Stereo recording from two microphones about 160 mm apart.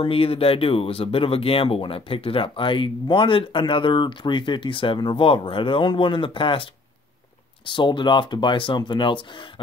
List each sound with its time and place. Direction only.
0.0 s speech: 35° left (ahead or behind)